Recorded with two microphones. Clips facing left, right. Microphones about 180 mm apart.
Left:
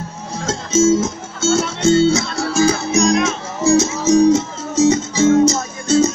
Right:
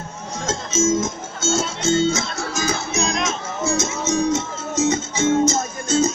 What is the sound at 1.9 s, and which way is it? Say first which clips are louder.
Speech: left 6 dB; 30° left (ahead or behind).